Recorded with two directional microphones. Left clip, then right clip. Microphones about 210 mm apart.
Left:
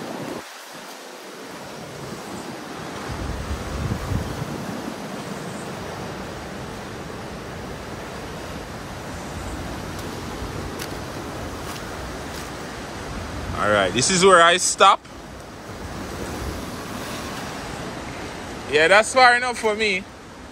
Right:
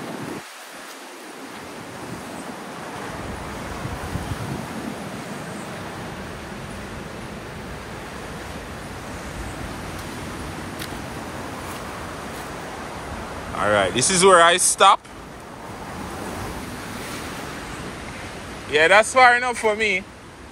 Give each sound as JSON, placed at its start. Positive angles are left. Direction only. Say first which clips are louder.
{"t": 13.6, "sound": "speech", "louder": "even", "side_deg": 10}
{"t": 18.7, "sound": "speech", "louder": "even", "side_deg": 15}